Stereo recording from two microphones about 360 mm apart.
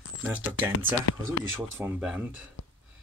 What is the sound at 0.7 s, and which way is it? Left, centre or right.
Speech, left.